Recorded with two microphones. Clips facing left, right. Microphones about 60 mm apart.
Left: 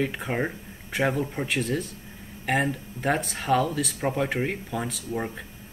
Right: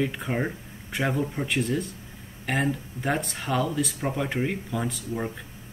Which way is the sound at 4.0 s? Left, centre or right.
Centre.